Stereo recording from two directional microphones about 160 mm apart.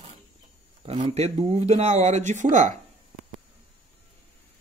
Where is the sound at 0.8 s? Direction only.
35° right (ahead or behind).